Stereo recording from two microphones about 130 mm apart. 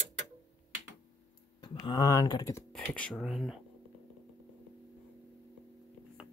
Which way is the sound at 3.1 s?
Centre (ahead or behind).